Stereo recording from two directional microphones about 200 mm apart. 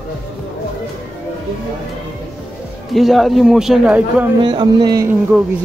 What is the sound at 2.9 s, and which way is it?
A man's voice, centre (ahead or behind).